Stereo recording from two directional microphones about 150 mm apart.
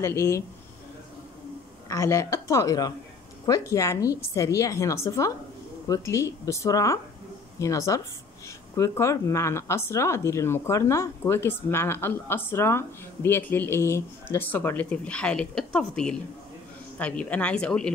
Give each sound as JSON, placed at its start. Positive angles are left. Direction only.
{"t": 0.0, "sound": "a woman's voice", "side_deg": 20}
{"t": 1.9, "sound": "a woman's voice", "side_deg": 20}